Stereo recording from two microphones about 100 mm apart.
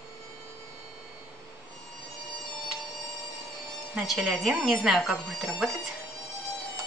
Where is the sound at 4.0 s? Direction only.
Centre (ahead or behind).